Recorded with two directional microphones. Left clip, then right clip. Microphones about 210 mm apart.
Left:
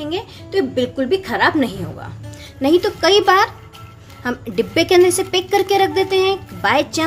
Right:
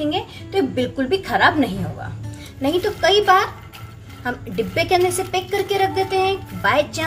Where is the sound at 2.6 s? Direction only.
55° left (ahead or behind).